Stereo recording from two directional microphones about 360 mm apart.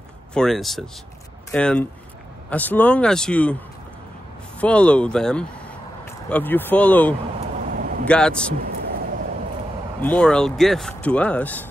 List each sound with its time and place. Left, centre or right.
0.3 s speech: centre
4.6 s speech: centre
7.7 s vehicle: right
8.1 s speech: centre
8.5 s a sound: right
10.0 s speech: centre